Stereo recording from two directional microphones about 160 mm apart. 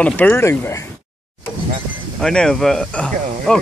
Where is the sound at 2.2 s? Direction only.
5° left (ahead or behind).